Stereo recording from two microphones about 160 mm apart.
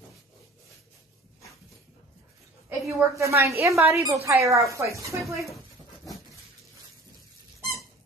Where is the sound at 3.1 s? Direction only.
20° right (ahead or behind).